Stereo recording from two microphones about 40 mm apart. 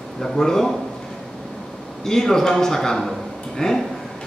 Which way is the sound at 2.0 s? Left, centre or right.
Centre.